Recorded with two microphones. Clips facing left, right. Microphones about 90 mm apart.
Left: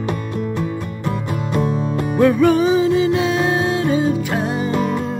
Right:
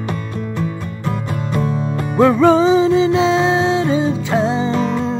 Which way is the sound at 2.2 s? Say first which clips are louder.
Right 3 dB; 20° right (ahead or behind).